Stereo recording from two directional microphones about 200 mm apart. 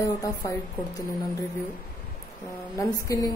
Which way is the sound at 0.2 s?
15° left (ahead or behind).